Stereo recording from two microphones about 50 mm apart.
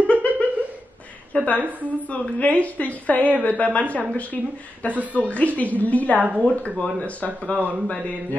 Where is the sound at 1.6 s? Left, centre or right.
Right.